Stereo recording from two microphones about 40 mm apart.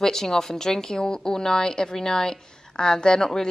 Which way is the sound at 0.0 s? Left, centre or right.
Centre.